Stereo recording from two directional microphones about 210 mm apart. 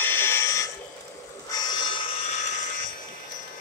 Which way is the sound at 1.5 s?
20° left (ahead or behind).